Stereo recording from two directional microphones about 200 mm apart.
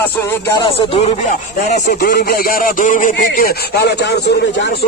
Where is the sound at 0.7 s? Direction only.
30° left (ahead or behind).